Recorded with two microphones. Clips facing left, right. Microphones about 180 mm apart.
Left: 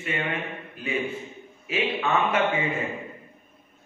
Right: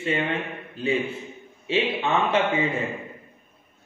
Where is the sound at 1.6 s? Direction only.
30° right (ahead or behind).